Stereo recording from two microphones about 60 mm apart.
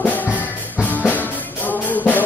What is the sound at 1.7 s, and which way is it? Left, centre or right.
Music, left.